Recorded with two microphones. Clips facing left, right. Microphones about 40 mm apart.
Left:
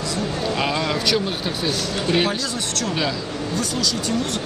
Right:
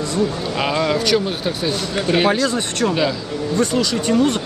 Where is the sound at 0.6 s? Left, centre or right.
Centre.